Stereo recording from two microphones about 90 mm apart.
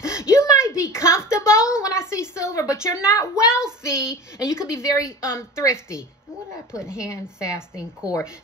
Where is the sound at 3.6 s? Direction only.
10° right (ahead or behind).